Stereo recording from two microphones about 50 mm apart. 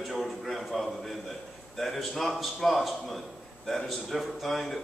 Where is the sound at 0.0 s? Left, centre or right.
Centre.